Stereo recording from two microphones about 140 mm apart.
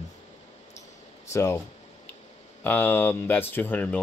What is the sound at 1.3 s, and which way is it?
Speech, 20° left (ahead or behind).